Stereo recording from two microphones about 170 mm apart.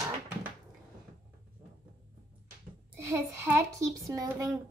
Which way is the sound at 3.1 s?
15° right (ahead or behind).